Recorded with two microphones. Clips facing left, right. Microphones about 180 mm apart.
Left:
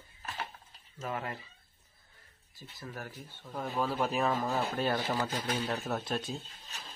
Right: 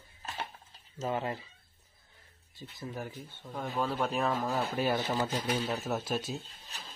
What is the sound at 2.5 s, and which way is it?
Speech, 20° right (ahead or behind).